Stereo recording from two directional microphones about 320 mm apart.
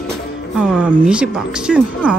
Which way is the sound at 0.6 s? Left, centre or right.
Centre.